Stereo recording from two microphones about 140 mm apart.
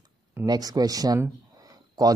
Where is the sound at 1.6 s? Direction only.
25° right (ahead or behind).